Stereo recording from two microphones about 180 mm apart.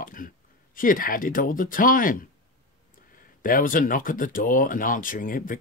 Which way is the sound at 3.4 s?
50° left (ahead or behind).